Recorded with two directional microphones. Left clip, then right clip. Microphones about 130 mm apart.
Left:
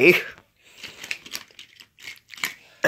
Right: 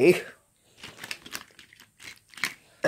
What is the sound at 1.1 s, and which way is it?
Crumpling, 30° right (ahead or behind).